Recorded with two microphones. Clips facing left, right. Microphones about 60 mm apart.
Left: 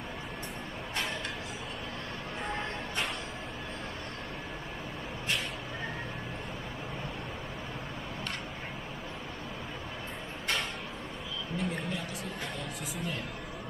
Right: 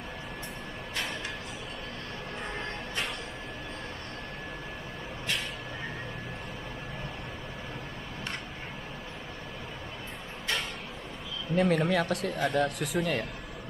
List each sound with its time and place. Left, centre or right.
11.5 s speech: right